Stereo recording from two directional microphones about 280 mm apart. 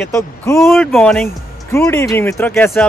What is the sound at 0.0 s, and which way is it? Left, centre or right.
Speech, centre.